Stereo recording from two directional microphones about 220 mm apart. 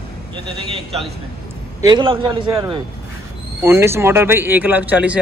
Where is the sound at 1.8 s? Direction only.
20° right (ahead or behind).